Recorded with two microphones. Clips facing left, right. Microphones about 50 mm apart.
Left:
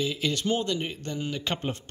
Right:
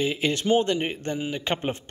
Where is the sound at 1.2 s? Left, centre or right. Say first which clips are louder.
Even; right.